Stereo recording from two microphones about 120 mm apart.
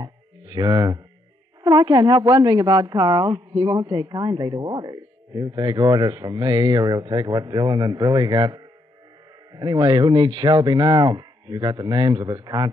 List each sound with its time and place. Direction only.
0.0 s music: 35° right (ahead or behind)
1.6 s speech: 35° right (ahead or behind)